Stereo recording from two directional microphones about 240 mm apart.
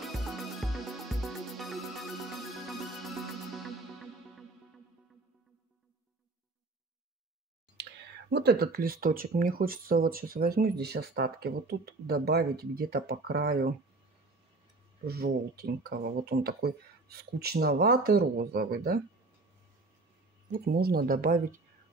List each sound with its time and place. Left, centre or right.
0.0 s music: centre
7.8 s whispering: right
8.3 s speech: right
15.0 s speech: right
20.6 s speech: right